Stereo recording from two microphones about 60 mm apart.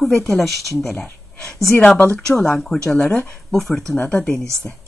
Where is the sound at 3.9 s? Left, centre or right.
Centre.